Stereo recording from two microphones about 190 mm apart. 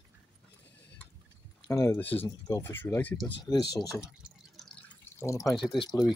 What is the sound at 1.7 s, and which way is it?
Speech, 15° left (ahead or behind).